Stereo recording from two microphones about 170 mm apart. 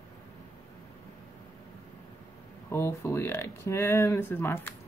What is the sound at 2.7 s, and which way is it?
Speech, 15° left (ahead or behind).